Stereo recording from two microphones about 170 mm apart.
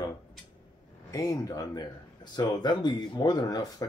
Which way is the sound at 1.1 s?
20° left (ahead or behind).